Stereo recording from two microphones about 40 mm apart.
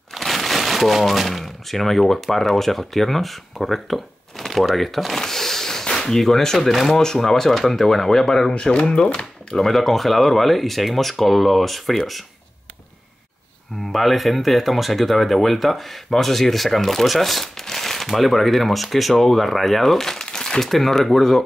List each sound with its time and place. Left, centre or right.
0.1 s speech: centre
8.6 s speech: left
9.7 s speech: centre
13.9 s speech: centre